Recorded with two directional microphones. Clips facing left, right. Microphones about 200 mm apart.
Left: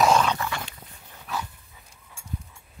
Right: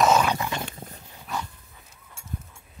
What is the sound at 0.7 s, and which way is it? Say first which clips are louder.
Dog: right 7 dB; 45° right (ahead or behind).